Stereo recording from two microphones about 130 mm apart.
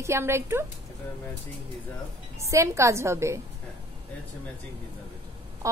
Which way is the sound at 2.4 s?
20° right (ahead or behind).